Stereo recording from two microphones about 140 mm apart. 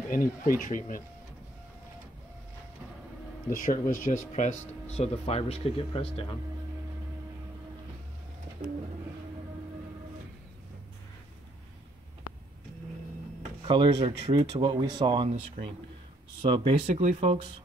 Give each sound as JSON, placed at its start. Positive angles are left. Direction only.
{"t": 0.1, "sound": "speech", "side_deg": 80}
{"t": 3.4, "sound": "speech", "side_deg": 75}
{"t": 13.7, "sound": "speech", "side_deg": -35}
{"t": 16.3, "sound": "speech", "side_deg": -35}
{"t": 16.8, "sound": "speech", "side_deg": -60}